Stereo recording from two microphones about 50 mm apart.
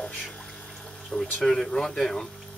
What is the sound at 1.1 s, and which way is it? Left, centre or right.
Speech, centre.